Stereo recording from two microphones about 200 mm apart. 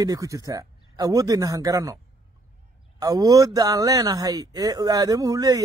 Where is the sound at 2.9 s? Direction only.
20° right (ahead or behind).